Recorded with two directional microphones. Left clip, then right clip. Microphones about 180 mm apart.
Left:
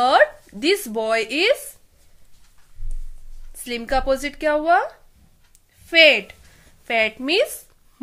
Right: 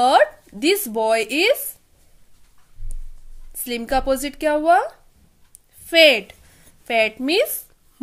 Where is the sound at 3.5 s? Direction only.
20° right (ahead or behind).